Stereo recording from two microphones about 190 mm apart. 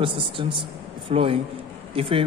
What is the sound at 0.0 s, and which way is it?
Speech, 25° right (ahead or behind).